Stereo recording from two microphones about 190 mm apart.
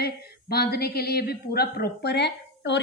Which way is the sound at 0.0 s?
55° left (ahead or behind).